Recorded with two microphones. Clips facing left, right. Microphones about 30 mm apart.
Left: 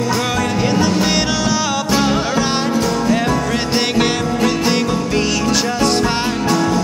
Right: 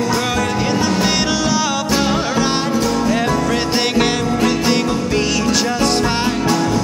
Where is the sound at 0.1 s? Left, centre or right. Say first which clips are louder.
Even; centre.